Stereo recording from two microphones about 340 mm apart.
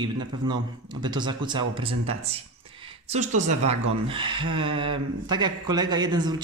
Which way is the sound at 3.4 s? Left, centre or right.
Right.